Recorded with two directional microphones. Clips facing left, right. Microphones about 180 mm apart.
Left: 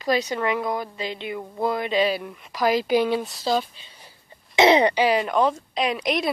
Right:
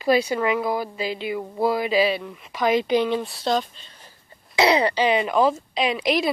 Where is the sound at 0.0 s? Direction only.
10° right (ahead or behind).